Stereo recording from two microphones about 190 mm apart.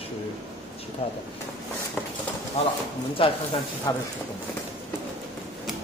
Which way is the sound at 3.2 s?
30° left (ahead or behind).